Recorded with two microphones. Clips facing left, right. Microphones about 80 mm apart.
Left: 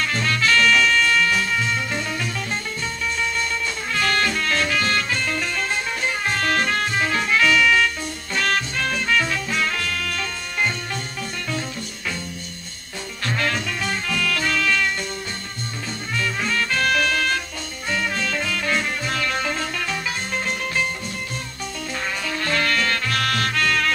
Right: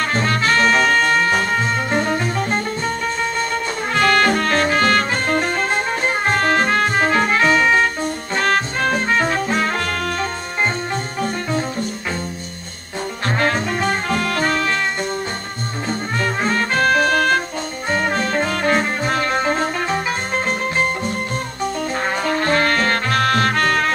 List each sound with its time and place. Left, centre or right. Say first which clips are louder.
0.0 s brass instrument: right 4 dB; right
3.9 s music: right 7 dB; right
13.4 s music: right 6 dB; right
16.2 s music: right 3 dB; right
22.2 s music: right 6 dB; right